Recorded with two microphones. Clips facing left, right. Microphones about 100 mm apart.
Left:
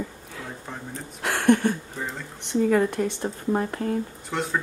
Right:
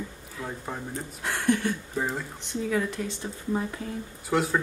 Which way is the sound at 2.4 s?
55° left (ahead or behind).